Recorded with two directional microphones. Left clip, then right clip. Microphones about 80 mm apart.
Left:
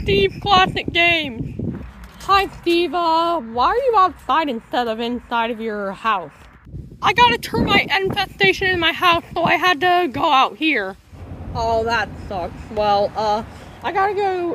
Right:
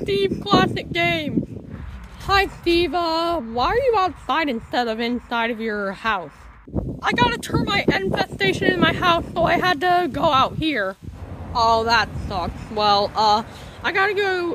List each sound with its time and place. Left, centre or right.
0.0 s speech: centre
2.2 s speech: right
4.0 s speech: centre
7.0 s speech: centre